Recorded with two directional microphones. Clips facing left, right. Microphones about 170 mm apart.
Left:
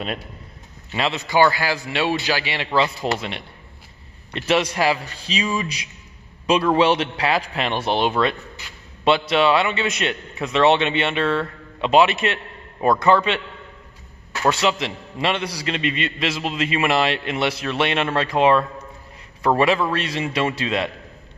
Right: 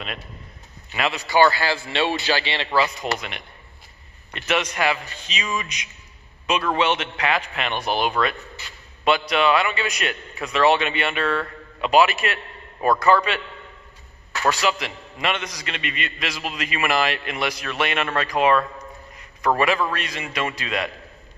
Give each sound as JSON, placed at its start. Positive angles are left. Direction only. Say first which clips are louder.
{"t": 0.9, "sound": "a man's voice", "louder": "even", "side_deg": 25}
{"t": 2.8, "sound": "a man's voice", "louder": "left 4 dB", "side_deg": 30}
{"t": 9.3, "sound": "a man's voice", "louder": "left 2 dB", "side_deg": 30}